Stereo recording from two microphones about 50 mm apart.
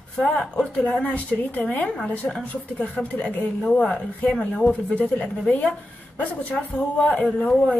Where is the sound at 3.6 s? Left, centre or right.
Centre.